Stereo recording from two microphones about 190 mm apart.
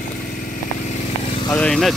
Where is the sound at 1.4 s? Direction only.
5° left (ahead or behind).